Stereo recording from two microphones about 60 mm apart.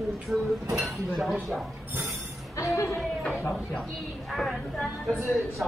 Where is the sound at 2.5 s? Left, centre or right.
Left.